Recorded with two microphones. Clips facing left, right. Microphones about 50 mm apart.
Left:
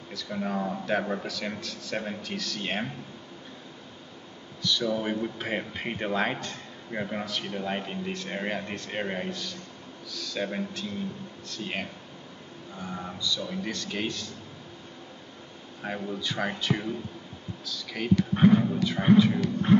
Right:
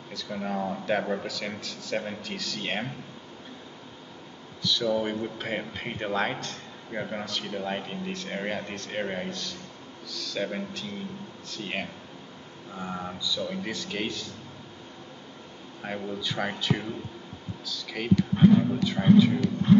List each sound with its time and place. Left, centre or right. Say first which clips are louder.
0.1 s speech: left 1 dB; centre
4.6 s speech: right 1 dB; centre
12.7 s a man's voice: right 2 dB; centre
15.8 s speech: even; centre
18.3 s a man's voice: right 1 dB; left
18.6 s speech: right 1 dB; centre